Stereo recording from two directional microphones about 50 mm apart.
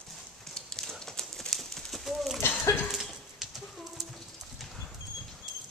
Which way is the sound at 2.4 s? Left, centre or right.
Left.